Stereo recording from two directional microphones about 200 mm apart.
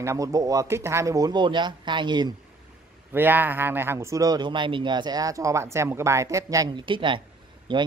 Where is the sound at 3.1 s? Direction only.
10° right (ahead or behind).